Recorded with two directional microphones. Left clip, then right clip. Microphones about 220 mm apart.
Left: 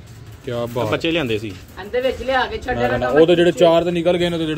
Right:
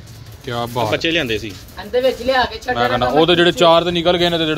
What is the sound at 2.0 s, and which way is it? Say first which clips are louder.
Speech: right 3 dB; 50° right (ahead or behind).